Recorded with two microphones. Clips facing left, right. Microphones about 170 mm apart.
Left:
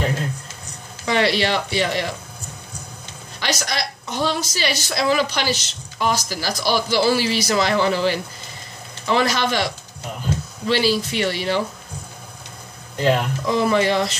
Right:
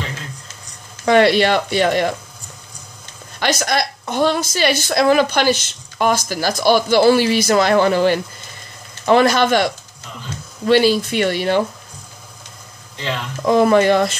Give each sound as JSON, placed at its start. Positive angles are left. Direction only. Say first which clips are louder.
{"t": 1.0, "sound": "a woman's voice", "louder": "right 7 dB", "side_deg": -55}
{"t": 3.3, "sound": "a woman's voice", "louder": "right 6 dB", "side_deg": -55}
{"t": 10.7, "sound": "a woman's voice", "louder": "right 6 dB", "side_deg": -55}
{"t": 12.9, "sound": "speech", "louder": "left 7 dB", "side_deg": 45}
{"t": 13.5, "sound": "a woman's voice", "louder": "right 6 dB", "side_deg": -50}